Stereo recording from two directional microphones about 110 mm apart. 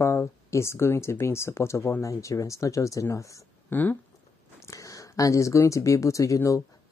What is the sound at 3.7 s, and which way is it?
Speech, 15° left (ahead or behind).